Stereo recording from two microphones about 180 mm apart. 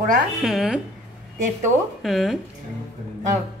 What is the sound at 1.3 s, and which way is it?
Speech, 45° right (ahead or behind).